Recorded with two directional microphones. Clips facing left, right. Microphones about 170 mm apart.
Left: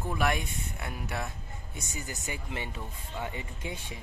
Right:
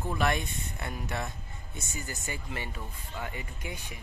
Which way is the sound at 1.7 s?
20° left (ahead or behind).